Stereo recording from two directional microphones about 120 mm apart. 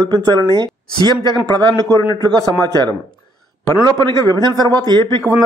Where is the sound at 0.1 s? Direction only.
35° right (ahead or behind).